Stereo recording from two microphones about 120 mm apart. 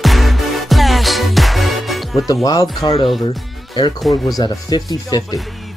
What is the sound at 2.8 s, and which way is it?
Speech, 40° left (ahead or behind).